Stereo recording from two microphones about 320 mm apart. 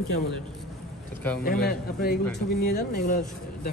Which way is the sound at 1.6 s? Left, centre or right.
Left.